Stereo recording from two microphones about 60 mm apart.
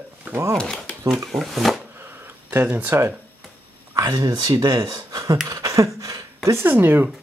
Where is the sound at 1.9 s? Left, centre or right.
Right.